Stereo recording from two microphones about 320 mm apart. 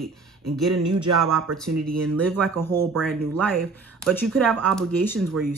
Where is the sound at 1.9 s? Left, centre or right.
Right.